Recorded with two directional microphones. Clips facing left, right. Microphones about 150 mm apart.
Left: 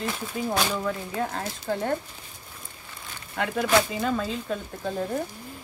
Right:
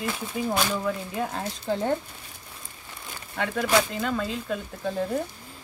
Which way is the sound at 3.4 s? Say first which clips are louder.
Left 1 dB; 5° left (ahead or behind).